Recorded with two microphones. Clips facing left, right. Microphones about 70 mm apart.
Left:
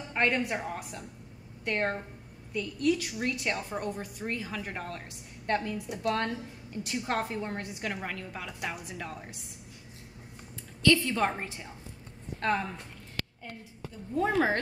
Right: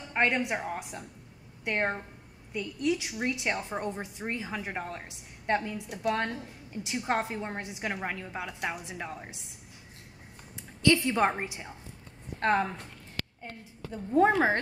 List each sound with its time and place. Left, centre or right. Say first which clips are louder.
0.1 s a woman's voice: right 1 dB; centre
10.8 s a woman's voice: right 1 dB; right
12.4 s a woman's voice: right 3 dB; right
14.3 s a woman's voice: right 1 dB; right